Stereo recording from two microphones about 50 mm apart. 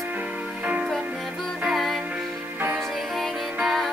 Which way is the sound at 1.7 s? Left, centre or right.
Centre.